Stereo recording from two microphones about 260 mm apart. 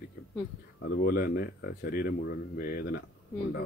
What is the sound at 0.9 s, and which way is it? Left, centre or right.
A man's voice, left.